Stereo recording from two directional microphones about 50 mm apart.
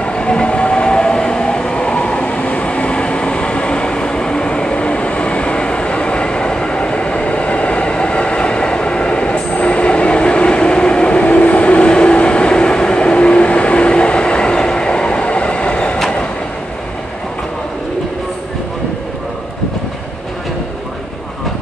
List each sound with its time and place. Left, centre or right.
0.0 s train: centre